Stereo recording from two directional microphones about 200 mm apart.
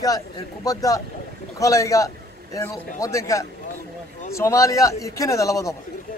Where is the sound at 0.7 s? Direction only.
15° left (ahead or behind).